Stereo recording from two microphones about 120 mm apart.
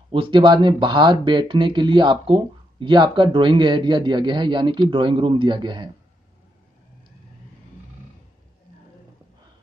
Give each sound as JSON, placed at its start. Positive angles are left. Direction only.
{"t": 0.1, "sound": "speech", "side_deg": -45}